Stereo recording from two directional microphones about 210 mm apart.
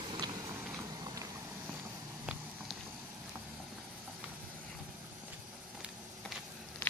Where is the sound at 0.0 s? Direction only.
20° right (ahead or behind).